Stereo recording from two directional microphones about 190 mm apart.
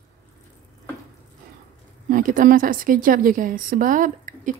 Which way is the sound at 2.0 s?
45° right (ahead or behind).